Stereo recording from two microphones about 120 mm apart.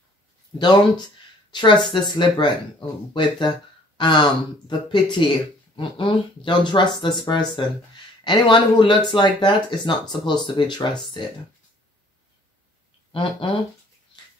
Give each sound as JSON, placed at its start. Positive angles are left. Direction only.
{"t": 0.6, "sound": "speech", "side_deg": 35}
{"t": 13.1, "sound": "speech", "side_deg": 45}